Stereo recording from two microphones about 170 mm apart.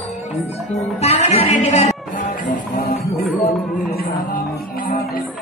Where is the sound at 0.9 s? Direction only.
40° left (ahead or behind).